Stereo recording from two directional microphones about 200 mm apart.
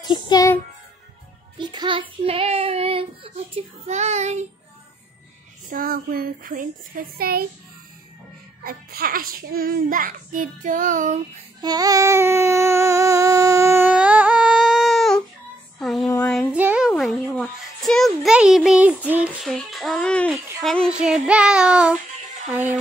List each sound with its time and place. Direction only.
0.0 s a child's voice: 20° left (ahead or behind)
1.6 s child singing: 20° right (ahead or behind)
3.5 s a child's voice: 35° right (ahead or behind)
5.7 s a child's voice: 45° right (ahead or behind)
8.6 s a child's voice: 50° right (ahead or behind)
11.6 s child singing: 20° right (ahead or behind); by 15.2 s centre (ahead or behind)
15.8 s a sound: centre (ahead or behind)
16.5 s music: 5° right (ahead or behind)